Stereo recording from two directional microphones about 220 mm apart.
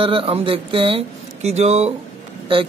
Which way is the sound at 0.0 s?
25° right (ahead or behind).